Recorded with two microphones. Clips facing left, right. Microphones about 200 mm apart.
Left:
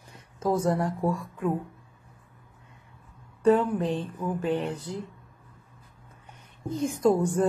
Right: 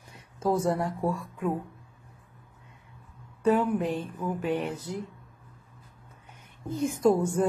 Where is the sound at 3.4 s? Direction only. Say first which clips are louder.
Left 2 dB; 5° right (ahead or behind).